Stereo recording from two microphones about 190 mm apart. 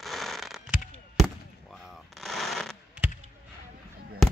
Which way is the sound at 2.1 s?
Centre (ahead or behind).